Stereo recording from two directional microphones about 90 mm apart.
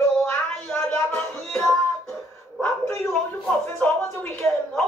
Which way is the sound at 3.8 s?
10° left (ahead or behind).